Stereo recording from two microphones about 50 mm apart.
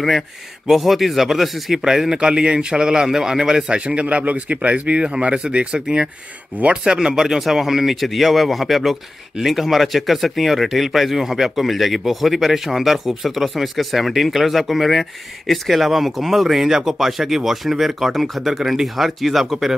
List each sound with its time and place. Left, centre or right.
0.7 s speech: centre